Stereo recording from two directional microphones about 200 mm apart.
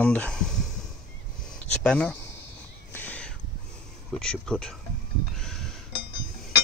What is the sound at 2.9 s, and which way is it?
Crow, 10° left (ahead or behind).